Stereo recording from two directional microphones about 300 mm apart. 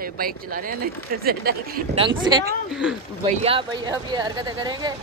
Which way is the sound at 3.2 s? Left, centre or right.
Centre.